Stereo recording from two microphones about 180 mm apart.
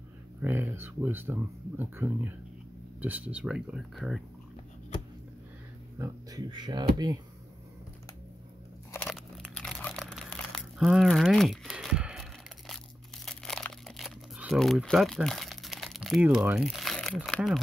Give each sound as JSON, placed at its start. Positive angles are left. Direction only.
{"t": 0.4, "sound": "speech", "side_deg": -10}
{"t": 5.9, "sound": "speech", "side_deg": -20}
{"t": 9.1, "sound": "a sound", "side_deg": 0}